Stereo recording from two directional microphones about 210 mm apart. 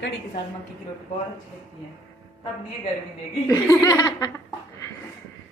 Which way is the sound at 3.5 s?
15° left (ahead or behind).